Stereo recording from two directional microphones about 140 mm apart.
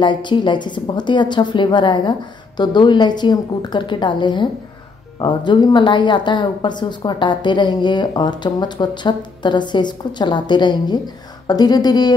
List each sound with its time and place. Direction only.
0.0 s a woman's voice: 35° left (ahead or behind)